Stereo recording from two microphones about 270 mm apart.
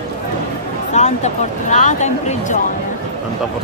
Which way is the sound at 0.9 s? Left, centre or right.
Left.